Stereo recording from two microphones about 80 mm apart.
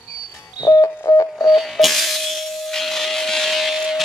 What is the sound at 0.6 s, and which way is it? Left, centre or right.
Telephone dialing, left.